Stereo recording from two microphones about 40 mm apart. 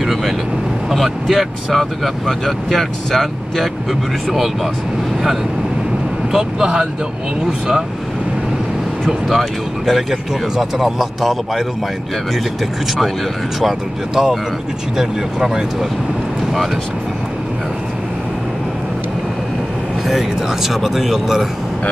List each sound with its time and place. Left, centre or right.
0.0 s speech: centre
6.3 s speech: centre
9.3 s speech: centre
13.6 s speech: centre
20.1 s speech: centre